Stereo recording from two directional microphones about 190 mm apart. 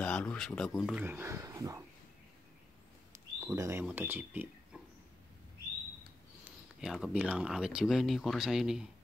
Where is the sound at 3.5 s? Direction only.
15° right (ahead or behind).